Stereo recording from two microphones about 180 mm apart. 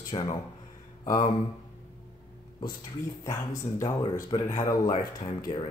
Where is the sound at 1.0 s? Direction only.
50° left (ahead or behind).